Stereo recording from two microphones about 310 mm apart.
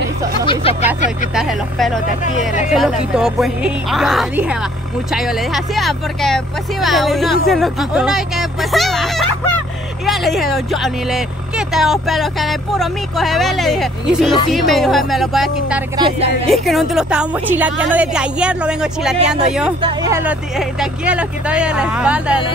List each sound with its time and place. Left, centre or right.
0.5 s speech: centre
1.3 s speech: centre
2.2 s speech: left
2.7 s speech: centre